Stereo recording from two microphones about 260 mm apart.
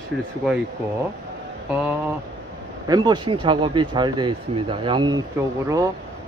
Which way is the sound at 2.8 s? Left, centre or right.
Centre.